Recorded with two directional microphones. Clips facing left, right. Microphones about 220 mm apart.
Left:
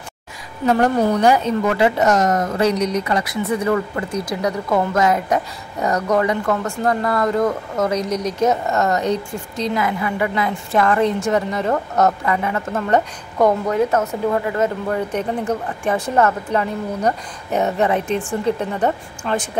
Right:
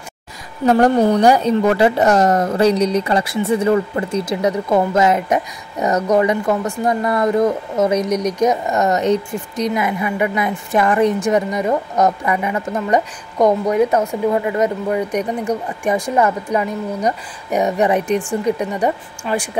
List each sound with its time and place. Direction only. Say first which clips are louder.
0.7 s a woman's voice: right 3 dB; 35° right (ahead or behind); by 19.5 s 10° right (ahead or behind)